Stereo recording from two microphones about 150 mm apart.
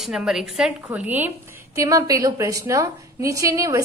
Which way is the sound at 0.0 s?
5° right (ahead or behind).